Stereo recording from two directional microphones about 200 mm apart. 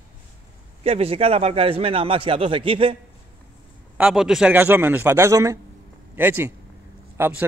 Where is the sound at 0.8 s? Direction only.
30° right (ahead or behind).